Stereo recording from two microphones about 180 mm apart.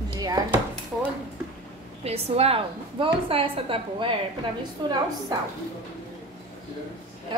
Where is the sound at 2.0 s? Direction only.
35° right (ahead or behind).